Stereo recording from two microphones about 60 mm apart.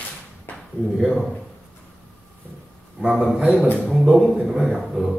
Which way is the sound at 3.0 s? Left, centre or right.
Centre.